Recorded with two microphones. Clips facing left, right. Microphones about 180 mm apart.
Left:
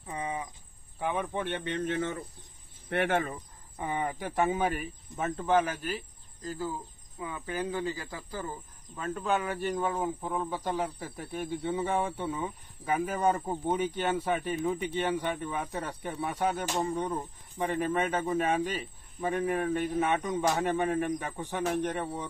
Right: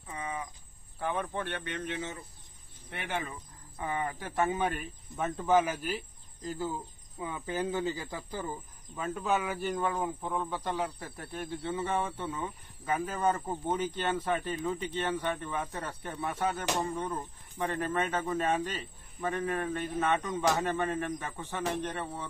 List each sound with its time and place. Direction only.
0.0 s cricket: 30° left (ahead or behind)
0.9 s speech: 15° left (ahead or behind)
1.8 s speech: 50° left (ahead or behind)
3.7 s speech: 20° left (ahead or behind); by 5.9 s 5° right (ahead or behind)
7.2 s speech: 25° right (ahead or behind)
8.9 s speech: 5° right (ahead or behind)